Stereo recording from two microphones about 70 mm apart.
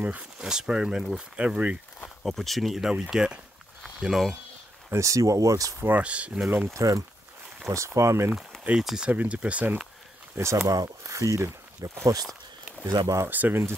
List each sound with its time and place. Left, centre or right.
0.0 s speech: right
2.2 s speech: centre
4.9 s speech: right
5.9 s speech: right
6.7 s speech: right
8.7 s speech: centre
9.1 s speech: centre
10.3 s speech: right
12.8 s speech: right
13.3 s speech: right